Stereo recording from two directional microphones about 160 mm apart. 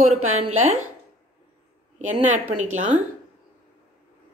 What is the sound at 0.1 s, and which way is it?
Speech, 45° right (ahead or behind).